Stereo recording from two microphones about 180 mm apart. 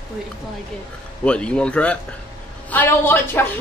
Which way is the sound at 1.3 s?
5° left (ahead or behind).